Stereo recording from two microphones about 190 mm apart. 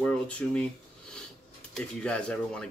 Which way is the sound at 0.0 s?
5° left (ahead or behind).